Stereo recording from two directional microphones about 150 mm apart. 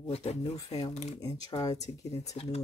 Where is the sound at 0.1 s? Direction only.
45° left (ahead or behind).